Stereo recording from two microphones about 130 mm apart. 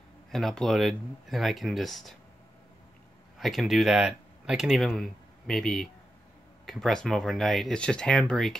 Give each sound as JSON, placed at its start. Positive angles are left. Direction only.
{"t": 0.3, "sound": "speech", "side_deg": 0}
{"t": 3.3, "sound": "speech", "side_deg": 0}